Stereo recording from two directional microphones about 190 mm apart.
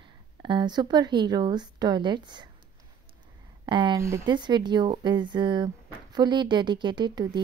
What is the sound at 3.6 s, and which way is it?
A woman's voice, 25° right (ahead or behind).